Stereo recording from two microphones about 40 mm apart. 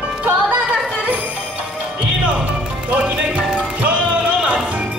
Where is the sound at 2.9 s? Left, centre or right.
Right.